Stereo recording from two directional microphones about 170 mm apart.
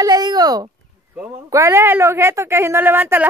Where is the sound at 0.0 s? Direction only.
25° right (ahead or behind).